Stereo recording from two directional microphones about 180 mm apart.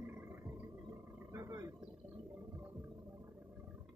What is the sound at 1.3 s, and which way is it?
Roaring cats, 15° right (ahead or behind).